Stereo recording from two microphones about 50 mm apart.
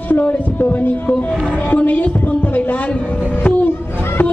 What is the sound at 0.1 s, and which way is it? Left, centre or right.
A woman's voice, left.